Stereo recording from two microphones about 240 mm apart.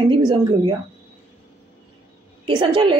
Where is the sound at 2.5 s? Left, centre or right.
Centre.